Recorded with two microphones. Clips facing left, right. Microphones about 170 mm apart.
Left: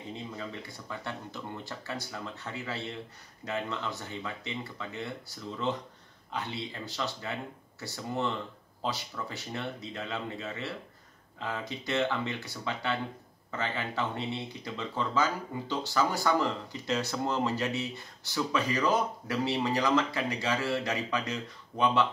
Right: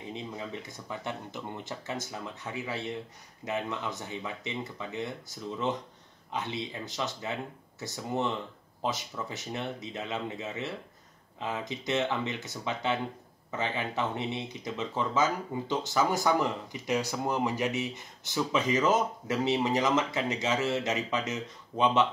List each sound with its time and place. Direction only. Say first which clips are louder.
0.1 s speech: right 1 dB; 20° right (ahead or behind)